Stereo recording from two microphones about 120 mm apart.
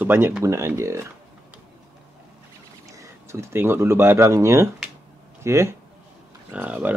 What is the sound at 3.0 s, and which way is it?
Speech, 25° right (ahead or behind).